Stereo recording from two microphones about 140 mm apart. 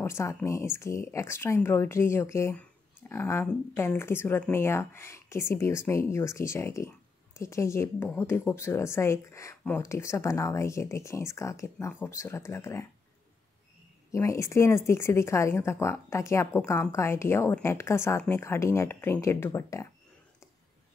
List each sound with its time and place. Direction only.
0.0 s speech: 20° left (ahead or behind)
14.1 s speech: 20° left (ahead or behind)